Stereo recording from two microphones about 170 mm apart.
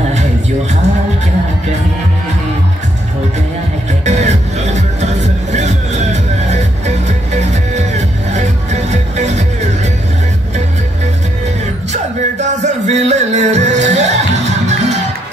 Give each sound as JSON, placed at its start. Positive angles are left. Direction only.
{"t": 4.0, "sound": "music", "side_deg": -40}
{"t": 11.9, "sound": "music", "side_deg": -40}